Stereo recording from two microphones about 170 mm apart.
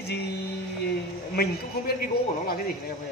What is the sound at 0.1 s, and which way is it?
Music, 75° left (ahead or behind).